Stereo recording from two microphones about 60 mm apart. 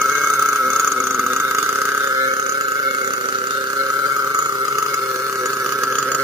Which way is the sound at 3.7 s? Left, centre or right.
Right.